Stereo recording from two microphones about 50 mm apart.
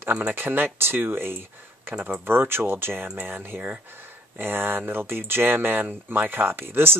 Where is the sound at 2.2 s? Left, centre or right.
Right.